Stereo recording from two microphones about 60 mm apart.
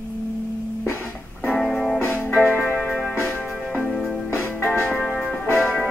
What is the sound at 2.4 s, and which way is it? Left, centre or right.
Music, left.